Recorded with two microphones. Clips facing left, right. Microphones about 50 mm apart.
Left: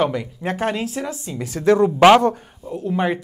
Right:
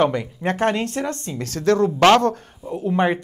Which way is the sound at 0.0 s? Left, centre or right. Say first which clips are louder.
Right 2 dB; centre.